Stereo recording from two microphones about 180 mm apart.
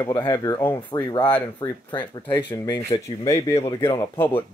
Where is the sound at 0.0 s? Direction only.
20° left (ahead or behind).